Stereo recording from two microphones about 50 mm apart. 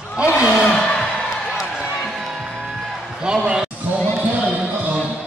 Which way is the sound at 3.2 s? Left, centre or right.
Centre.